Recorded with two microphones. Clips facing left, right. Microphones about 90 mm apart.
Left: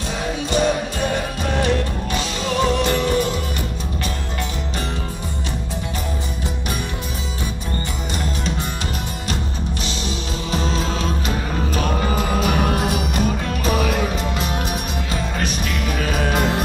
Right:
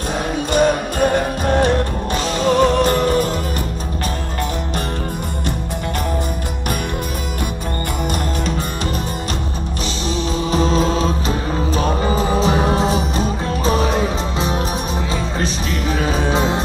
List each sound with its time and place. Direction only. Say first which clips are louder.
0.5 s music: right 4 dB; 45° right (ahead or behind)
10.5 s music: right 6 dB; 35° right (ahead or behind)
16.0 s music: right 2 dB; 25° right (ahead or behind)